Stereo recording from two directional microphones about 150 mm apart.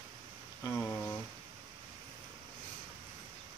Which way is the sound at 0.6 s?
15° left (ahead or behind).